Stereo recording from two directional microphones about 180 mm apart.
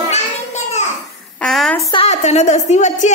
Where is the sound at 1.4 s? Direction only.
5° left (ahead or behind).